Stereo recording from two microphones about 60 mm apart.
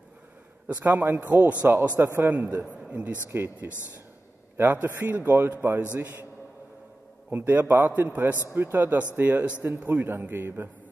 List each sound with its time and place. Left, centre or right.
0.7 s a man's voice: right
1.7 s a man's voice: right
2.3 s a man's voice: right
3.6 s a man's voice: right
7.2 s a man's voice: right
9.8 s a man's voice: right